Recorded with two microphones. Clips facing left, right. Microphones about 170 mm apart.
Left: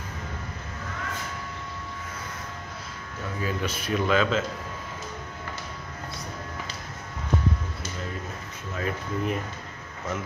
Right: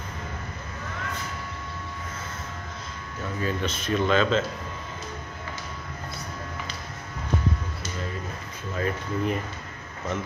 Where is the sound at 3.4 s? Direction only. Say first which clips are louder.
Right 1 dB; 10° left (ahead or behind).